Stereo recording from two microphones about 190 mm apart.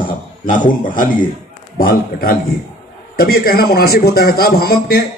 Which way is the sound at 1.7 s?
50° left (ahead or behind).